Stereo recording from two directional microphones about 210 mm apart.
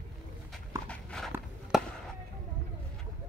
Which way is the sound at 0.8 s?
5° left (ahead or behind).